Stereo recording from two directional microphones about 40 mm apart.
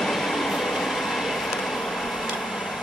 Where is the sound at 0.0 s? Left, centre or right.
Centre.